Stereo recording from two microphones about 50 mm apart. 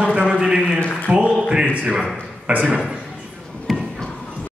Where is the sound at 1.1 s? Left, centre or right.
Right.